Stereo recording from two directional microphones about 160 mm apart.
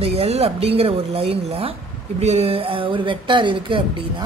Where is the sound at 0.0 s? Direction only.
40° right (ahead or behind).